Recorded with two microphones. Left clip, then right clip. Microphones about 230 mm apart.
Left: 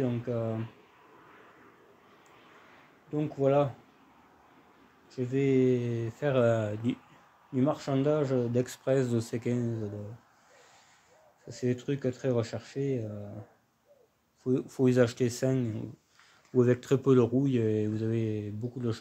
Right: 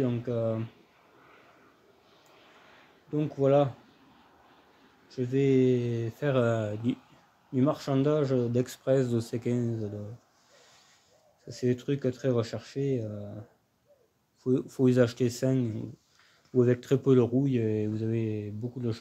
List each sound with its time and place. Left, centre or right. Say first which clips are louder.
0.0 s speech: right 2 dB; centre
2.4 s a sound: right 1 dB; right
3.1 s speech: right 2 dB; centre
5.1 s speech: right 2 dB; centre
11.4 s speech: right 2 dB; centre
14.4 s speech: right 1 dB; centre